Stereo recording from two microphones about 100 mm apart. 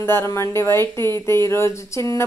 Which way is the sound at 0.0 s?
25° left (ahead or behind).